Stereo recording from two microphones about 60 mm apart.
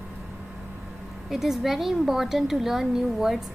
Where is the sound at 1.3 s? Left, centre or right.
Centre.